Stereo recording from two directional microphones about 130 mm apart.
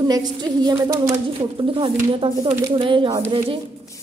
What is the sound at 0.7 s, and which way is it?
Speech, 20° right (ahead or behind).